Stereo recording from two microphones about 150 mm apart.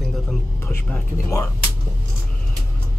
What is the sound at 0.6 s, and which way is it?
Speech, 15° left (ahead or behind).